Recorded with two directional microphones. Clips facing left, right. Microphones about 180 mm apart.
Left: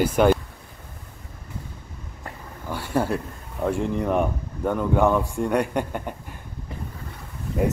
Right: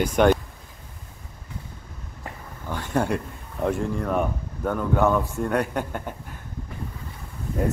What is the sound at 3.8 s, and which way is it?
Speech, 15° left (ahead or behind).